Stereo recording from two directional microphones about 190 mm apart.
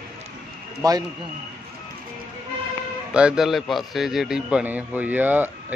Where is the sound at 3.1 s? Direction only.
5° right (ahead or behind).